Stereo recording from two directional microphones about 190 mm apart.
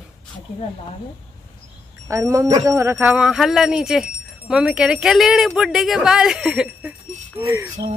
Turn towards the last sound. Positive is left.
turn(degrees=-15)  # may be behind; listen again after turning